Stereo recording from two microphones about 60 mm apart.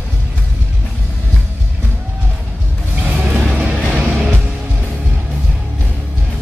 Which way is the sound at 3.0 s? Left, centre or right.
Centre.